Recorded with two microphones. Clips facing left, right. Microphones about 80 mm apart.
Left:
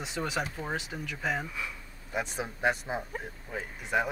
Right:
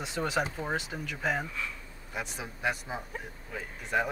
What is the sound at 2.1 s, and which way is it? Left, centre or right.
Speech, left.